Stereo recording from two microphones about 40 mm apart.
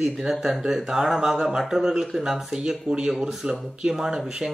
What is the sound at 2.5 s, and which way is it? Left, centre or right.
Speech, centre.